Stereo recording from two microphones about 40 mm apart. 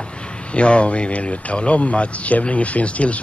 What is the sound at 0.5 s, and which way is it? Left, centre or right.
A man's voice, left.